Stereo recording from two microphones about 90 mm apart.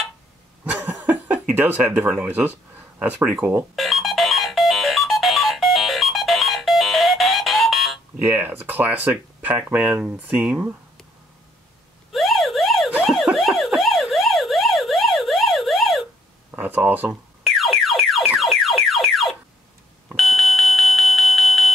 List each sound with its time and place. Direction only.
0.7 s a sound: 20° right (ahead or behind)
3.0 s speech: 15° right (ahead or behind)
3.7 s music: centre (ahead or behind)
8.2 s speech: 20° right (ahead or behind)
12.1 s police car: centre (ahead or behind)
13.0 s emergency vehicle: 5° right (ahead or behind)
16.5 s a sound: 20° right (ahead or behind)
17.4 s car alarm: centre (ahead or behind)
20.2 s fire alarm: centre (ahead or behind)